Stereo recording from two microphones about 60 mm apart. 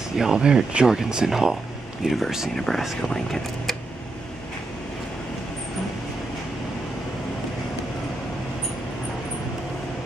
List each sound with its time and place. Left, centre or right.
0.2 s speech: centre